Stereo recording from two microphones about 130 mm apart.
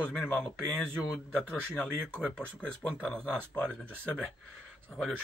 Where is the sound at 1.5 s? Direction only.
5° left (ahead or behind).